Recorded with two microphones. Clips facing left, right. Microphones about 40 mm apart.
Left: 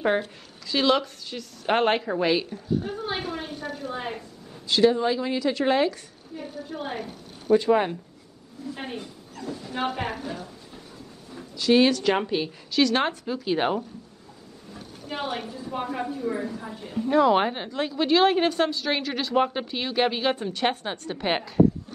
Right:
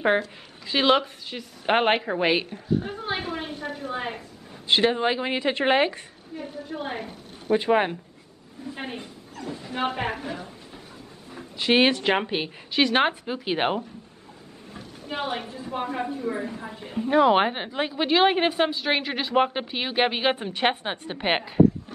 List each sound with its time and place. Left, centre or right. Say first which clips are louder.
0.7 s a woman's voice: right 2 dB; right
3.9 s a woman's voice: right 3 dB; centre
4.6 s a woman's voice: left 1 dB; right
11.5 s a woman's voice: left 1 dB; right
15.0 s a woman's voice: right 1 dB; right
16.4 s a woman's voice: even; right